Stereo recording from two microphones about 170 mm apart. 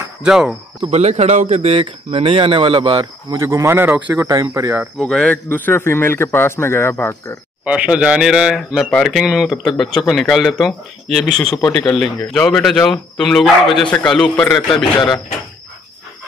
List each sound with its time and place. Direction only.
0.2 s speech: 5° right (ahead or behind)
0.8 s speech: 40° right (ahead or behind); by 4.8 s 20° right (ahead or behind)
4.9 s a man's voice: 5° left (ahead or behind)
7.6 s speech: 5° right (ahead or behind)